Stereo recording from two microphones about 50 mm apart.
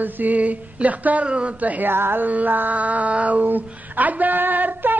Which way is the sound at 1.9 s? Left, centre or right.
Right.